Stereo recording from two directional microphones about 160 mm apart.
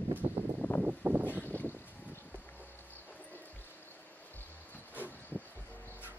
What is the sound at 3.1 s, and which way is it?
Music, 10° left (ahead or behind).